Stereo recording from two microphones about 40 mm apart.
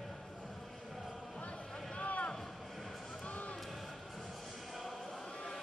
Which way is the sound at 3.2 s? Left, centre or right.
Left.